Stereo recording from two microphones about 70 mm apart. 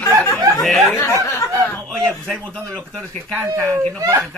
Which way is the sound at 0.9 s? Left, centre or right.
Left.